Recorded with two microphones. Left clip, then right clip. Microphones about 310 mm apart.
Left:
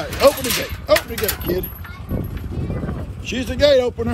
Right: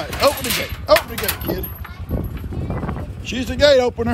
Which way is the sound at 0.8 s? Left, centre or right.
Centre.